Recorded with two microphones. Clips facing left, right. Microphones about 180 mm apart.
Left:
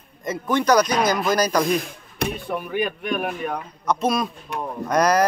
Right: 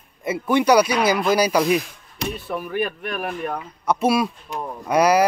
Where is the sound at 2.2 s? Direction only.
55° left (ahead or behind).